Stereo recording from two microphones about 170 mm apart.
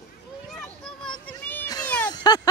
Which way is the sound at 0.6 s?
5° left (ahead or behind).